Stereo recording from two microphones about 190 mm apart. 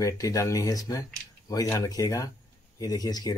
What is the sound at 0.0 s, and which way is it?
Speech, 15° left (ahead or behind).